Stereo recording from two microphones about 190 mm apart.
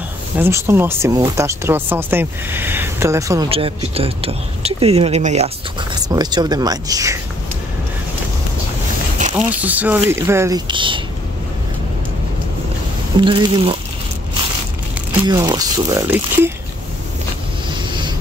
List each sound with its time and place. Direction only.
0.4 s speech: 15° right (ahead or behind)
3.4 s speech: 30° right (ahead or behind)
6.0 s speech: 20° right (ahead or behind)
9.6 s speech: 10° right (ahead or behind)
10.7 s speech: 25° right (ahead or behind)
13.2 s speech: 25° right (ahead or behind)
15.2 s speech: 20° right (ahead or behind)
17.6 s vehicle: 25° right (ahead or behind)